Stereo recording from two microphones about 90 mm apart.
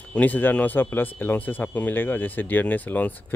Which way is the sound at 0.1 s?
20° left (ahead or behind).